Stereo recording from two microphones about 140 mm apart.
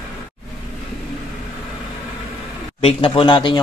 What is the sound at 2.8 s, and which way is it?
Speech, 40° left (ahead or behind).